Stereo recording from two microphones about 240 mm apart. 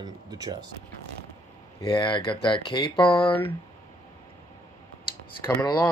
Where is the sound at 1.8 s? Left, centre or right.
Centre.